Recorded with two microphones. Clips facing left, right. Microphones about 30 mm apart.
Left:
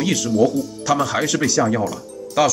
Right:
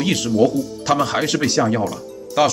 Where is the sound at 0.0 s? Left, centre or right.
Right.